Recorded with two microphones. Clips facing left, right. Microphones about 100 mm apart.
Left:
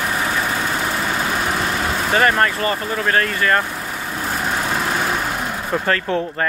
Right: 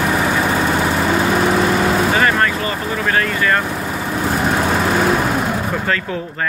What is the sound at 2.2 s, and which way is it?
Speech, 40° left (ahead or behind).